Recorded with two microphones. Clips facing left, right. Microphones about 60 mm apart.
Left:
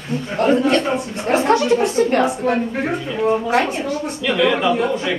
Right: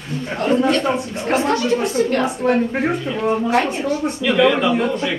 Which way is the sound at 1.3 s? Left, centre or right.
Left.